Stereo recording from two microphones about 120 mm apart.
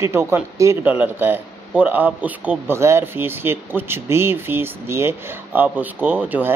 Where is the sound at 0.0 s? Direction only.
20° right (ahead or behind).